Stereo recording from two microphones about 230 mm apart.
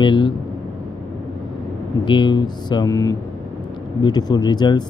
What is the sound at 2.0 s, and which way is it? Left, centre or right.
Speech, centre.